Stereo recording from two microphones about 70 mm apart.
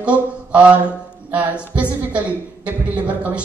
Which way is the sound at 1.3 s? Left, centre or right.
Centre.